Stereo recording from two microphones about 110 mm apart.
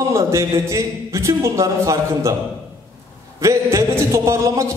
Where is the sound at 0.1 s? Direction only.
25° right (ahead or behind).